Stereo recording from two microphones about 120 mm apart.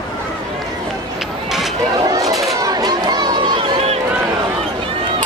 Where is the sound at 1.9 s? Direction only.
30° right (ahead or behind).